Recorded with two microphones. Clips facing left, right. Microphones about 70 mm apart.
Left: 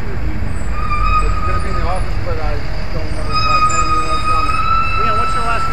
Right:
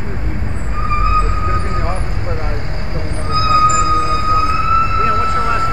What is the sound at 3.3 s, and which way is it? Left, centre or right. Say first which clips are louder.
Music: right 2 dB; right.